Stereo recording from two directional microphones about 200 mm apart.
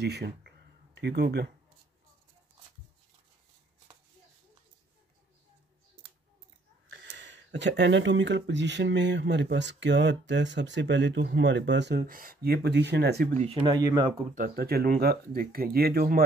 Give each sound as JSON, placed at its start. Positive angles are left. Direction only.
{"t": 0.0, "sound": "a sound", "side_deg": -55}
{"t": 6.9, "sound": "speech", "side_deg": -65}
{"t": 13.3, "sound": "speech", "side_deg": -30}
{"t": 14.3, "sound": "speech", "side_deg": -45}